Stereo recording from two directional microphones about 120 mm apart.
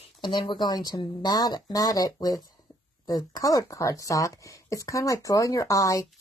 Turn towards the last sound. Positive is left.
turn(degrees=25)  # may be behind; listen again after turning